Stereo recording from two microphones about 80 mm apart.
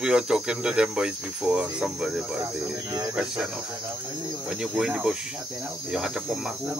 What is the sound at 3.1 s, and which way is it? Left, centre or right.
Speech, centre.